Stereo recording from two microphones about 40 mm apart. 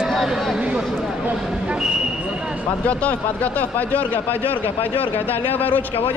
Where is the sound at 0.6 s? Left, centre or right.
Right.